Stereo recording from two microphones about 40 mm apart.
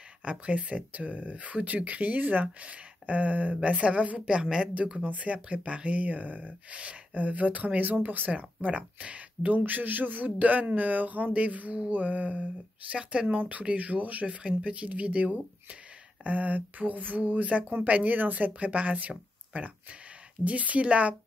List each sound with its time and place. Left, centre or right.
0.2 s speech: right
4.3 s speech: centre
5.0 s speech: right
9.7 s a man's voice: right
18.5 s speech: right